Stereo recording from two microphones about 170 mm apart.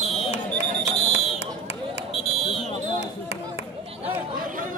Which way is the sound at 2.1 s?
Centre (ahead or behind).